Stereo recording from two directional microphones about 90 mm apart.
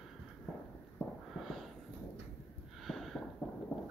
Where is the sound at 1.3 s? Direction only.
Centre (ahead or behind).